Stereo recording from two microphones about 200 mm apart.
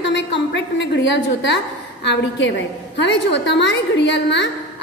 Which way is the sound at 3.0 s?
60° left (ahead or behind).